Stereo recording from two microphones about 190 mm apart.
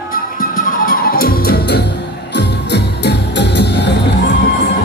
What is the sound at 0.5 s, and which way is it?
Music, 45° left (ahead or behind).